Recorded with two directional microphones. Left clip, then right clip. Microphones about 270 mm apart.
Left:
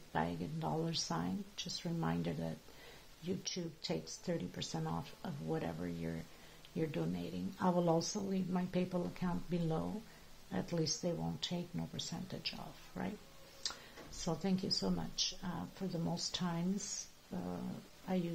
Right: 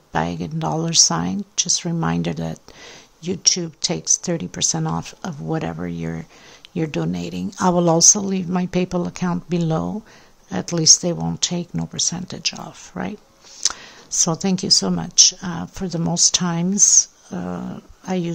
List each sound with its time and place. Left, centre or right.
0.1 s speech: right
14.2 s speech: right